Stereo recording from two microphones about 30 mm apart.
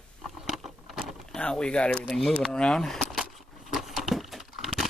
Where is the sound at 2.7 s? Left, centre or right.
Centre.